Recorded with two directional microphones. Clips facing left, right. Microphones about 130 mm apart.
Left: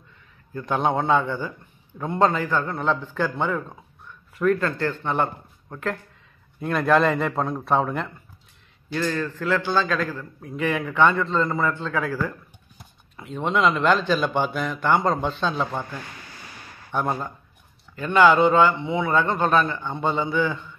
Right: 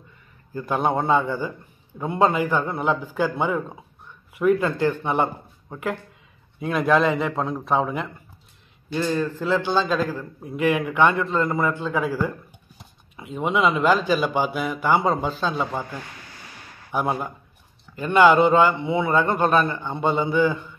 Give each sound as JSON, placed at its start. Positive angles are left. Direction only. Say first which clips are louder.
{"t": 0.5, "sound": "a man's voice", "louder": "even", "side_deg": -5}
{"t": 6.6, "sound": "a man's voice", "louder": "even", "side_deg": 0}
{"t": 8.9, "sound": "a man's voice", "louder": "right 2 dB", "side_deg": -20}